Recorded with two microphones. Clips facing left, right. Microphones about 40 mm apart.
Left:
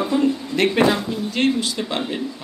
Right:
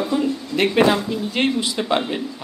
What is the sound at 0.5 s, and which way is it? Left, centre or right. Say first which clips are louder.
Speech: right 3 dB; centre.